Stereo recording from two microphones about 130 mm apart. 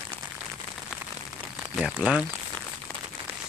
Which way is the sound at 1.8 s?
5° right (ahead or behind).